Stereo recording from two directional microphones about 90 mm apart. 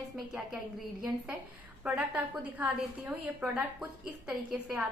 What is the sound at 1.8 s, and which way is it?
A woman's voice, 10° right (ahead or behind).